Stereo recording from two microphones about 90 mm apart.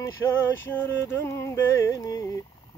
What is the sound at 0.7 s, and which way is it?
Male singing, 20° left (ahead or behind).